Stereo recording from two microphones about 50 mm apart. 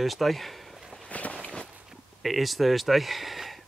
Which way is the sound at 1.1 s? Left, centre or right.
Left.